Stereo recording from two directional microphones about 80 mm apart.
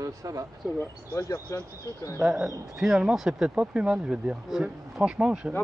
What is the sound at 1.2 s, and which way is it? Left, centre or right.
Speech, left.